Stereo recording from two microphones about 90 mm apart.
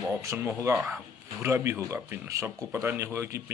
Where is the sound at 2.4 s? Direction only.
25° right (ahead or behind).